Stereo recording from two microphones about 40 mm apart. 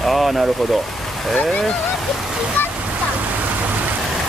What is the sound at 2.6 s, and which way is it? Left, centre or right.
Waterfall, left.